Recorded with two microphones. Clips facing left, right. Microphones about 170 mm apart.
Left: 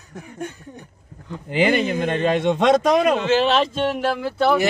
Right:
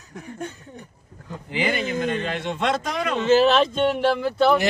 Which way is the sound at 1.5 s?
60° left (ahead or behind).